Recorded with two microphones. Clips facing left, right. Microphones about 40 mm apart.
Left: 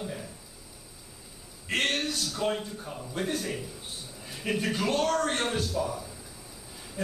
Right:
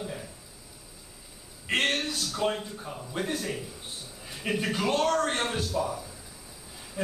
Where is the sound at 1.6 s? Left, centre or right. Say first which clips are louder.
Right 1 dB; centre.